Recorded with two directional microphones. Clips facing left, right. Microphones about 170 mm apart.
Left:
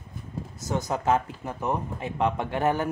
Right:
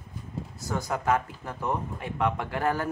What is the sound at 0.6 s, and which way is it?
Speech, 20° left (ahead or behind).